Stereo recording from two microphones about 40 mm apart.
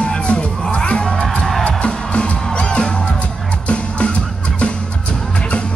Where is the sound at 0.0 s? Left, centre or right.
Left.